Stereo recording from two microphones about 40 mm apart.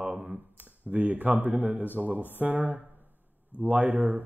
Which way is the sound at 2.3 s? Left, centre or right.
Right.